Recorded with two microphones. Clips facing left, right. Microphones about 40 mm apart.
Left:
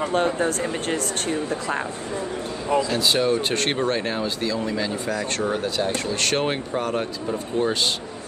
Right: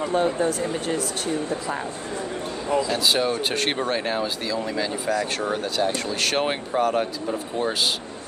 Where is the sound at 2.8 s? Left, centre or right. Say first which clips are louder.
Left 1 dB; centre.